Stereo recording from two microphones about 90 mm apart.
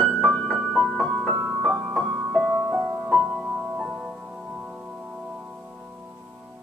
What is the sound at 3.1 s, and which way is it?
Music, centre (ahead or behind).